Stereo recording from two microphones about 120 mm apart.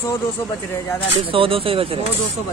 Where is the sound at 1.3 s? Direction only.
50° right (ahead or behind).